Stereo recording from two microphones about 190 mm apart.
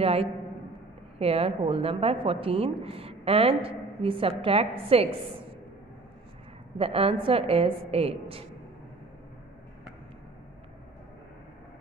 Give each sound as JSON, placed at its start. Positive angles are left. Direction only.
{"t": 0.0, "sound": "a man's voice", "side_deg": -30}
{"t": 6.8, "sound": "a woman's voice", "side_deg": -30}